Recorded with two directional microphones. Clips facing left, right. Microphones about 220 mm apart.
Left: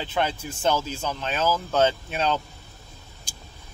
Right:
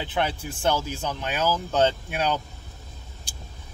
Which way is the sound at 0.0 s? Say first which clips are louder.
Even; 15° right (ahead or behind).